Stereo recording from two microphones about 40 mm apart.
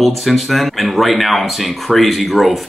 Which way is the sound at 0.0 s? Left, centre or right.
Centre.